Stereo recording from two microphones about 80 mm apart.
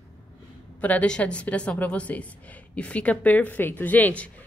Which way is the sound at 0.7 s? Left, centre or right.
Centre.